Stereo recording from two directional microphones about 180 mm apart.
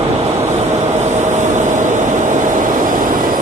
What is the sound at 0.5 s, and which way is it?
Vehicle, 40° right (ahead or behind).